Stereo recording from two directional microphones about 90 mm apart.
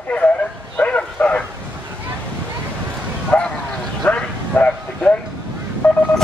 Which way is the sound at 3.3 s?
15° left (ahead or behind).